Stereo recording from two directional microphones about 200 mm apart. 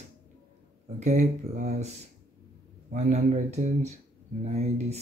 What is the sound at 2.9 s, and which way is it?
Speech, 35° right (ahead or behind).